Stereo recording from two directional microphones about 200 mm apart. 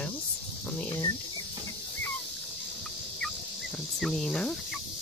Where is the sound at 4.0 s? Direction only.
Centre (ahead or behind).